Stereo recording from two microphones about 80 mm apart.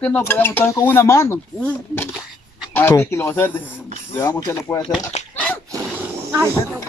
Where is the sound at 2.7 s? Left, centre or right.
Left.